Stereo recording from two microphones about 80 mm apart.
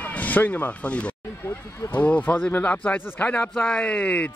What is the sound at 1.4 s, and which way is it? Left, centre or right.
Speech, left.